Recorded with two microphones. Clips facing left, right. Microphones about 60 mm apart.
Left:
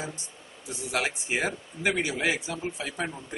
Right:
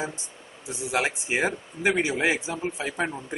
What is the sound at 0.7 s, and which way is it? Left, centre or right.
A man's voice, centre.